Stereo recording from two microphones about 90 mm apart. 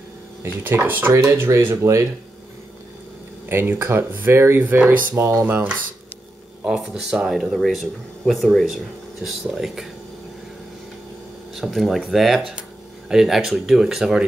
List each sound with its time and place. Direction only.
0.4 s speech: 25° right (ahead or behind)
3.4 s speech: 25° right (ahead or behind)
6.6 s speech: 5° right (ahead or behind)
11.5 s speech: centre (ahead or behind)